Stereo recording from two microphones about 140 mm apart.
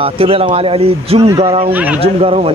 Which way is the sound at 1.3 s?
25° right (ahead or behind).